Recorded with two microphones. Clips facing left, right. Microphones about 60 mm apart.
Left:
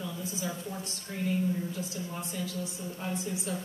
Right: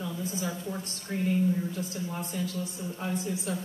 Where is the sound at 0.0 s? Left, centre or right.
Right.